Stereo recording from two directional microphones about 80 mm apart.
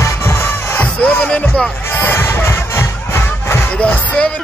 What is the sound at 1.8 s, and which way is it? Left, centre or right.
Music, left.